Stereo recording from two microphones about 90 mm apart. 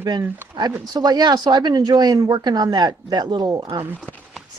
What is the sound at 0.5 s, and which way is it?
Speech, 60° right (ahead or behind).